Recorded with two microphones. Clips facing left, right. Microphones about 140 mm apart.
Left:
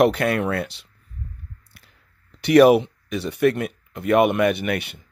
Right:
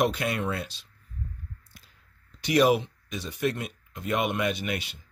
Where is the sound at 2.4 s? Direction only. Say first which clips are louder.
Left 9 dB; 60° left (ahead or behind).